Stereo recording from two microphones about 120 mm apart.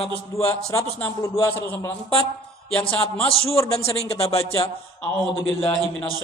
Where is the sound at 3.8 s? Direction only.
55° left (ahead or behind).